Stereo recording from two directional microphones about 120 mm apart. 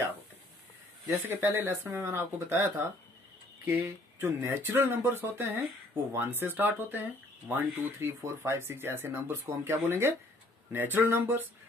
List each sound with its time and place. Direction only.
1.2 s speech: 20° right (ahead or behind)
4.2 s speech: 20° right (ahead or behind)